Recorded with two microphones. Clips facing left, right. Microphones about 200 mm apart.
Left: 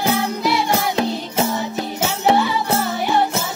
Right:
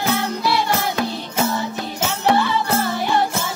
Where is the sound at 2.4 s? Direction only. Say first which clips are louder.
Left 1 dB; 10° left (ahead or behind).